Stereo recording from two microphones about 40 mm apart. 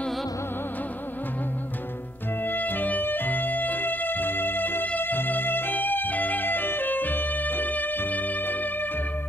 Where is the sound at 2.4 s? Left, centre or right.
Left.